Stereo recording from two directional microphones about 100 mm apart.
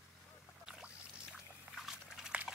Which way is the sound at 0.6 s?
5° right (ahead or behind).